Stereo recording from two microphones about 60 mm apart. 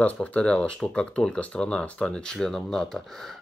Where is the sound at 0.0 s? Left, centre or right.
Left.